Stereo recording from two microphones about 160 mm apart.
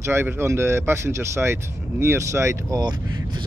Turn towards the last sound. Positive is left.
turn(degrees=-25)  # may be behind; listen again after turning